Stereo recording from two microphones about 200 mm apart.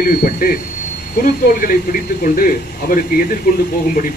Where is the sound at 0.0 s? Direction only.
45° left (ahead or behind).